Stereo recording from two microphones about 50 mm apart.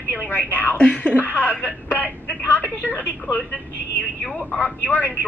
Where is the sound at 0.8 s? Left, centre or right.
Left.